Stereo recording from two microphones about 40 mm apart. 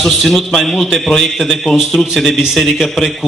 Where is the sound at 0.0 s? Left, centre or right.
Centre.